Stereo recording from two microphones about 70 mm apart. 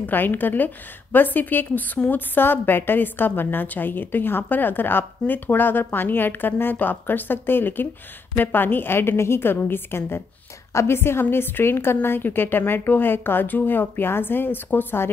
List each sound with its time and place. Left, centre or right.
0.0 s a woman's voice: left